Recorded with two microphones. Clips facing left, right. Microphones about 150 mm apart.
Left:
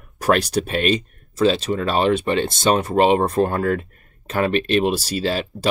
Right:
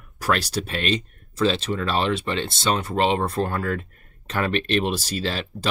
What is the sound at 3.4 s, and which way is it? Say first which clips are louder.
Speech: left 6 dB; 15° left (ahead or behind).